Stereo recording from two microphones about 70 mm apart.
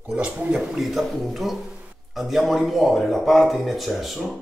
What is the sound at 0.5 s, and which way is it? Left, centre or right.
Speech, centre.